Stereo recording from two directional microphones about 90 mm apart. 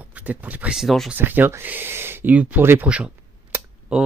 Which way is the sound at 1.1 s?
20° right (ahead or behind).